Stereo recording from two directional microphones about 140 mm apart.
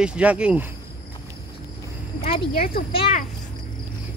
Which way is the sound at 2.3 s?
90° left.